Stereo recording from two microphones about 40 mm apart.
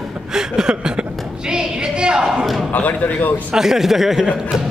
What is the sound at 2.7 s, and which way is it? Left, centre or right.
Speech, left.